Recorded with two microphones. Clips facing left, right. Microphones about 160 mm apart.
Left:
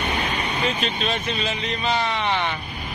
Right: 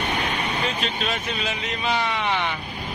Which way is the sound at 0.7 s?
Centre (ahead or behind).